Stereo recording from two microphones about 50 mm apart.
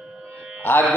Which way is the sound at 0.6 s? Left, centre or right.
Left.